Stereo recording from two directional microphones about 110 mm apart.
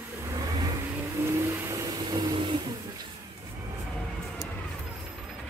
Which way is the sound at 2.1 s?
45° right (ahead or behind).